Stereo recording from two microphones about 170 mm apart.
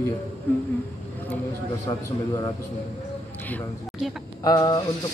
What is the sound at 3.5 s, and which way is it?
Speech, centre (ahead or behind).